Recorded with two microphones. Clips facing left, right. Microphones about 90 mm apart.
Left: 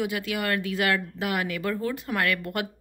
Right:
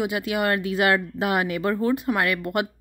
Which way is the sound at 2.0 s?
15° right (ahead or behind).